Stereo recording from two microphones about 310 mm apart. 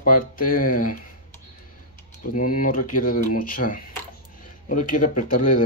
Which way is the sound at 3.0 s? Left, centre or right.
Left.